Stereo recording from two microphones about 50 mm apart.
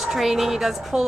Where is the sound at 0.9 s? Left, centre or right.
Right.